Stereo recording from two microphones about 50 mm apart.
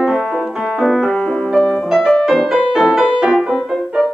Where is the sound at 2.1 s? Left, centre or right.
Centre.